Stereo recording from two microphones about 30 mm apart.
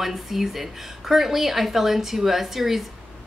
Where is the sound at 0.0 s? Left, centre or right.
Centre.